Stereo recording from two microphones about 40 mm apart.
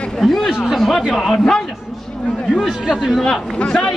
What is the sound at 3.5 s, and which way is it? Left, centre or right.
Speech, left.